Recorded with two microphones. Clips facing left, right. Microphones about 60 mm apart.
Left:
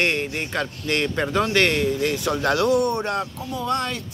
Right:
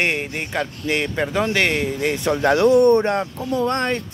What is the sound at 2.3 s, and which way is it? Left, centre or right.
Speech, right.